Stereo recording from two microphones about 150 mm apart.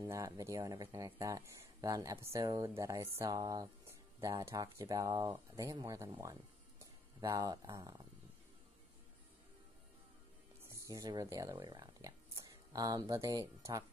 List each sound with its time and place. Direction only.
0.0 s speech: 20° right (ahead or behind)
10.7 s speech: 25° right (ahead or behind)